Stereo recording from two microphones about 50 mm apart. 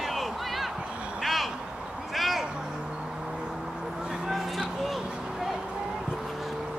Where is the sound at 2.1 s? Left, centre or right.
Centre.